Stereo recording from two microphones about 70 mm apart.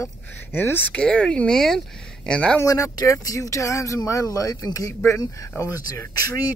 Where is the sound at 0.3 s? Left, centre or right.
Left.